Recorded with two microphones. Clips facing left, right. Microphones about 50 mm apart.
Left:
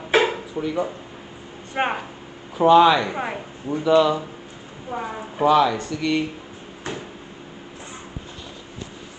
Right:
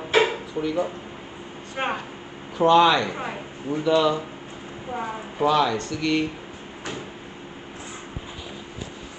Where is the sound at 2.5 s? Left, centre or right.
Centre.